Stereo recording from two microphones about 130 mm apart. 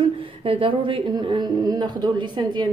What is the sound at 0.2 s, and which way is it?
A woman's voice, 45° right (ahead or behind).